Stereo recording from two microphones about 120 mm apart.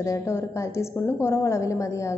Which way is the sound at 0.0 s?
25° left (ahead or behind).